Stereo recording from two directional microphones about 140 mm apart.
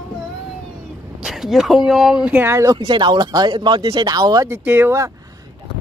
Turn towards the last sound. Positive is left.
turn(degrees=-20)  # may be behind; listen again after turning